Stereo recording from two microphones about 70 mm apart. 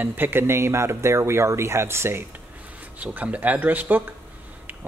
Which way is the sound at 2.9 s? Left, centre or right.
Right.